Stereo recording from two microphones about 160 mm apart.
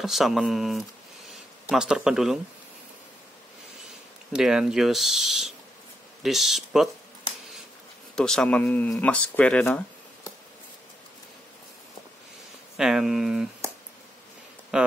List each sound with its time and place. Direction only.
0.0 s speech: centre (ahead or behind)
4.3 s speech: 5° right (ahead or behind)
8.2 s speech: 5° left (ahead or behind)
12.7 s speech: 5° right (ahead or behind)
14.7 s speech: 5° right (ahead or behind)